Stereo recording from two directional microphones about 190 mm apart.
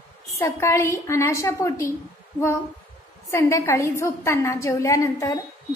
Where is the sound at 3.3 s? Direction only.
15° left (ahead or behind).